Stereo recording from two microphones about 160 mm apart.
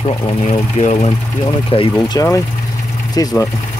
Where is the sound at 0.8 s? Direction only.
45° left (ahead or behind).